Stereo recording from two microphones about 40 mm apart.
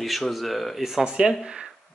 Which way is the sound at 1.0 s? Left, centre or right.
Right.